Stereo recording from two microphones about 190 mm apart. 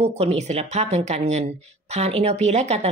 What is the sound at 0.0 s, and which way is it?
Speech, 35° right (ahead or behind).